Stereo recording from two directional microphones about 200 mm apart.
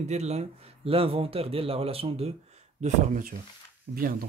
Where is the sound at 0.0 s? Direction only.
35° right (ahead or behind).